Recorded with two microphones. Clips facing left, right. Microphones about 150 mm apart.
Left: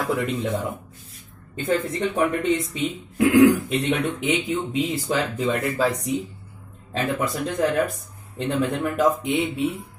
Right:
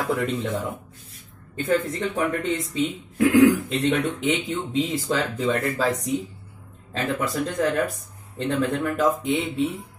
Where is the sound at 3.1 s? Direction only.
15° left (ahead or behind).